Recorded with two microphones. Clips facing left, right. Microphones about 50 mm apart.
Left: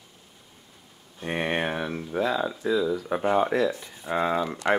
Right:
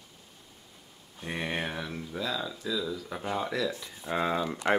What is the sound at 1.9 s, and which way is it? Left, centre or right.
Speech, left.